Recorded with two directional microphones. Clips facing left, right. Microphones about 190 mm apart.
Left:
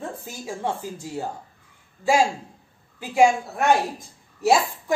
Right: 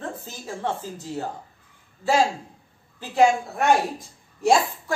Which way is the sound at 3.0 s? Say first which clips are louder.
Left 1 dB; 10° left (ahead or behind).